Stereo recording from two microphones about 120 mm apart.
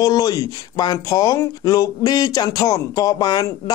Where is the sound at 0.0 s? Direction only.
30° left (ahead or behind).